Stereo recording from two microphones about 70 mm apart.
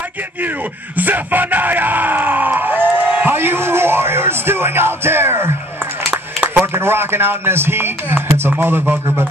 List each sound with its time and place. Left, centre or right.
0.9 s speech: right
6.6 s speech: right